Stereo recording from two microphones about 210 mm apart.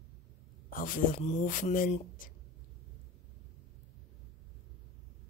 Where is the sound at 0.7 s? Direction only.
40° left (ahead or behind).